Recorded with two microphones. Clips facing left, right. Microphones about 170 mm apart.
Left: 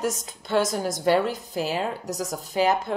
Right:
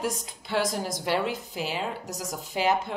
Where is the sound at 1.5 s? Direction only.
40° left (ahead or behind).